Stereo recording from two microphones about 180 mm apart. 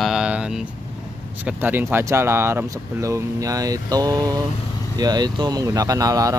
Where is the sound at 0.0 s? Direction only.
5° right (ahead or behind).